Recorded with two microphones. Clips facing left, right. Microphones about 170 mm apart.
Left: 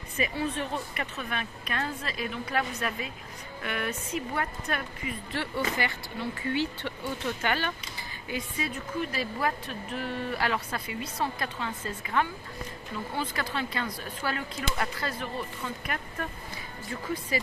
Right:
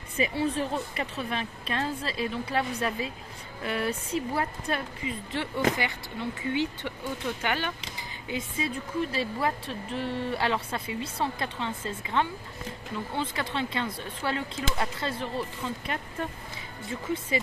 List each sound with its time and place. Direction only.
0.2 s speech: 30° right (ahead or behind)